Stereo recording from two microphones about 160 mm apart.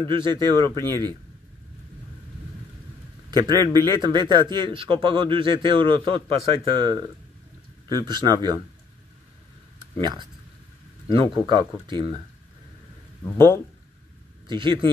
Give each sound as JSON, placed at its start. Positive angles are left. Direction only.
{"t": 0.1, "sound": "speech", "side_deg": -30}
{"t": 3.3, "sound": "speech", "side_deg": -25}
{"t": 9.9, "sound": "speech", "side_deg": -30}
{"t": 14.5, "sound": "speech", "side_deg": -30}